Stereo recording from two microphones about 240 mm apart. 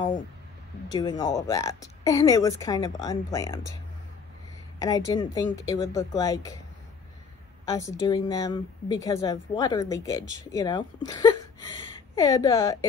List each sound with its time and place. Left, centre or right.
0.9 s a woman's voice: centre
4.7 s a woman's voice: centre
7.6 s a woman's voice: centre